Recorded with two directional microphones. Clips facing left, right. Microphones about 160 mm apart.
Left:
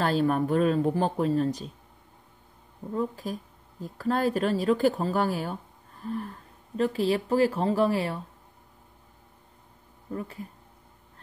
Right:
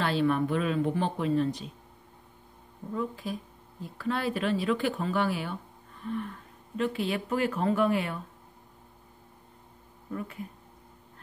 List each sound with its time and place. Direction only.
0.0 s speech: 40° left (ahead or behind)
2.9 s speech: 40° left (ahead or behind)
10.1 s speech: 35° left (ahead or behind)